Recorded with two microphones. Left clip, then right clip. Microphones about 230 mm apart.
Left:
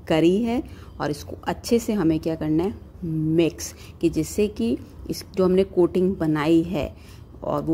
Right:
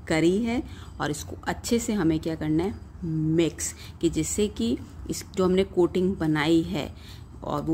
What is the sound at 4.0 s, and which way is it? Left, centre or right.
A woman's voice, centre.